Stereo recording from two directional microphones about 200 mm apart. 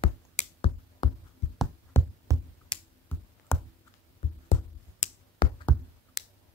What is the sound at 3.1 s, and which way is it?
Music, 10° left (ahead or behind).